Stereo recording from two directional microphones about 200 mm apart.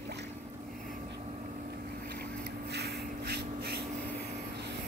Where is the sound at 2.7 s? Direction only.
55° right (ahead or behind).